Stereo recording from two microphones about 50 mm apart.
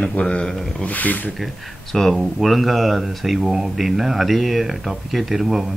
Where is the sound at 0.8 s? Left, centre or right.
Left.